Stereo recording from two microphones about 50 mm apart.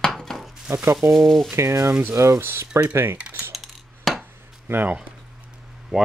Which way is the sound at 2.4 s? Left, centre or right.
Right.